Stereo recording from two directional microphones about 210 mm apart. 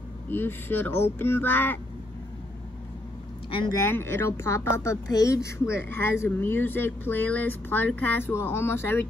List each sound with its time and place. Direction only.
0.3 s speech: 10° left (ahead or behind)
3.4 s speech: 25° left (ahead or behind)
3.8 s speech: 10° left (ahead or behind)